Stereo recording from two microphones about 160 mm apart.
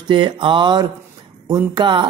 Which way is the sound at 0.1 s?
30° right (ahead or behind).